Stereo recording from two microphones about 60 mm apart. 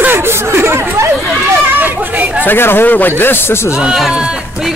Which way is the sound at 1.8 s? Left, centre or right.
Right.